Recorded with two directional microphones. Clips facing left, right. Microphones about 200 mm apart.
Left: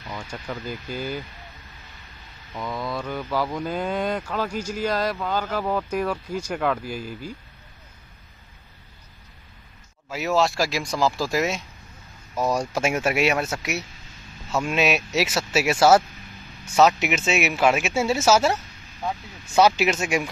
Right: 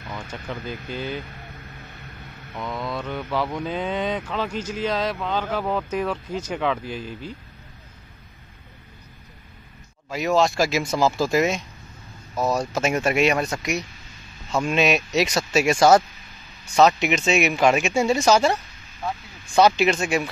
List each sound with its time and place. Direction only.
0.5 s speech: 5° left (ahead or behind)
1.8 s a sound: 60° right (ahead or behind)
2.5 s speech: 5° left (ahead or behind)
10.0 s speech: 5° left (ahead or behind)